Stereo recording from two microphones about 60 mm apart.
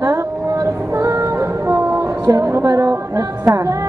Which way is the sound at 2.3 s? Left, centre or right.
Right.